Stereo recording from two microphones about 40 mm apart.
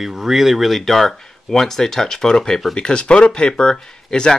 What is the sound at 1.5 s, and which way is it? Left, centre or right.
Speech, centre.